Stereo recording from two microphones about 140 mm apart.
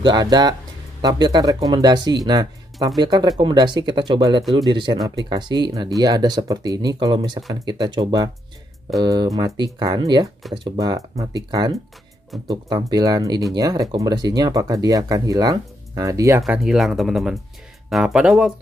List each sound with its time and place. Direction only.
0.0 s speech: 30° right (ahead or behind)
16.4 s speech: centre (ahead or behind)